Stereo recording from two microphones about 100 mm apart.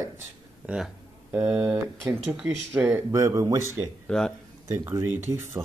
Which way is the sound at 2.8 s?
20° right (ahead or behind).